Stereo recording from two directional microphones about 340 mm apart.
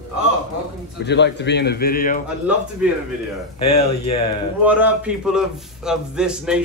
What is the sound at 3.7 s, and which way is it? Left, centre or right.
Speech, centre.